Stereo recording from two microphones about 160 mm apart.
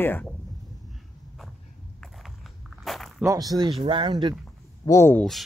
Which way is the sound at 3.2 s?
20° right (ahead or behind).